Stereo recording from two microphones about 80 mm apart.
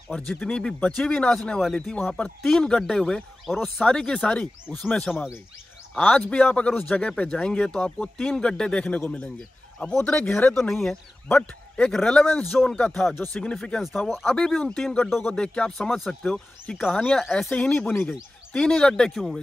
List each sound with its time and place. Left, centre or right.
0.4 s speech: centre
1.6 s speech: centre
2.0 s speech: centre
2.4 s speech: centre
3.8 s speech: centre
4.6 s speech: left
4.9 s speech: centre
12.9 s speech: centre
13.4 s speech: centre
15.2 s speech: centre
17.5 s speech: centre
18.5 s speech: centre